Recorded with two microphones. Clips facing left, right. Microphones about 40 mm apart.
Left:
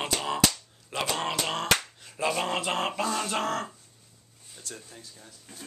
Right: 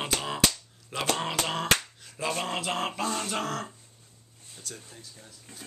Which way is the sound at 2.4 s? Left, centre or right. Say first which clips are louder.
Left 2 dB; centre.